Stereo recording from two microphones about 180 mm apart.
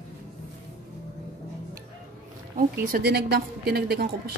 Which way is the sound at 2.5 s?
50° right (ahead or behind).